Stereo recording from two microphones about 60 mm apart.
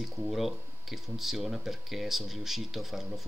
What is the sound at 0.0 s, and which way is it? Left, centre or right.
Speech, centre.